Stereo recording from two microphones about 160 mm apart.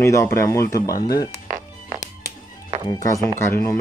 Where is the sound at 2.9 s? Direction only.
20° left (ahead or behind).